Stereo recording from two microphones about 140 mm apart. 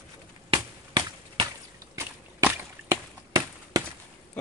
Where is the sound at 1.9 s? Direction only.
20° right (ahead or behind).